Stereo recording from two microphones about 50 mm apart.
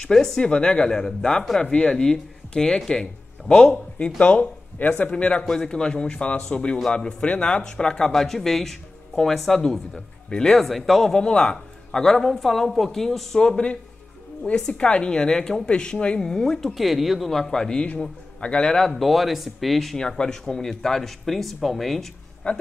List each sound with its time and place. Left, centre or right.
0.1 s speech: centre
0.4 s speech: left
5.5 s speech: centre
10.6 s speech: centre
16.6 s speech: centre; by 18.8 s left
18.8 s speech: centre
20.0 s speech: centre
22.4 s speech: left